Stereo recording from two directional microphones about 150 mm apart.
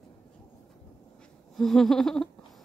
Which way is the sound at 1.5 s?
Centre (ahead or behind).